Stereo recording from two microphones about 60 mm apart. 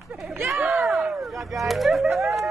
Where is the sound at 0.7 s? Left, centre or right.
Centre.